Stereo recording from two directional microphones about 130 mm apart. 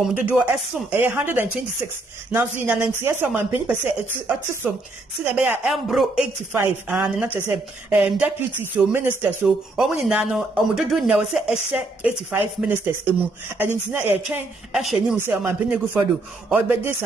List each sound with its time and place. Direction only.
0.1 s speech: 10° right (ahead or behind)
6.5 s speech: 15° right (ahead or behind)
14.7 s a woman's voice: 5° right (ahead or behind)
15.1 s speech: 15° right (ahead or behind)